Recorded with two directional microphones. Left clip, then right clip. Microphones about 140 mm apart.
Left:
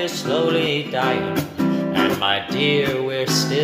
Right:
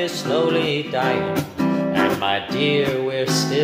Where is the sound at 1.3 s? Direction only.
30° left (ahead or behind).